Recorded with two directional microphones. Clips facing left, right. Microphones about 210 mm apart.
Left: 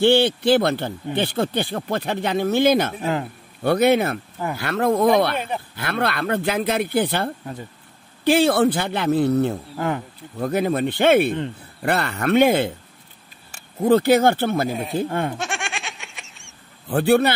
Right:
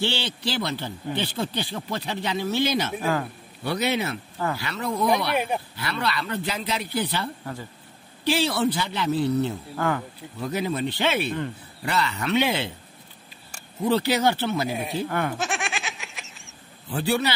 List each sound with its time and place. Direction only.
0.0 s speech: 55° left (ahead or behind)
3.0 s a man's voice: 25° left (ahead or behind)
3.6 s a man's voice: 55° left (ahead or behind)
5.3 s speech: 10° right (ahead or behind)
5.8 s a man's voice: 55° left (ahead or behind)
9.8 s a man's voice: 20° left (ahead or behind)
10.4 s a man's voice: 55° left (ahead or behind)
13.8 s a man's voice: 50° left (ahead or behind)
15.0 s a man's voice: 25° left (ahead or behind)
15.3 s goat: centre (ahead or behind)
16.9 s speech: 55° left (ahead or behind)